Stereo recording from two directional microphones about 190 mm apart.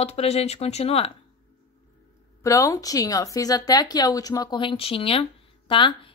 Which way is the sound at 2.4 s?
15° left (ahead or behind).